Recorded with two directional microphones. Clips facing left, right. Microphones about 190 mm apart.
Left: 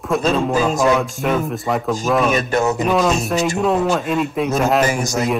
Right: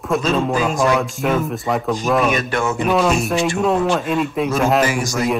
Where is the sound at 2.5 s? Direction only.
40° left (ahead or behind).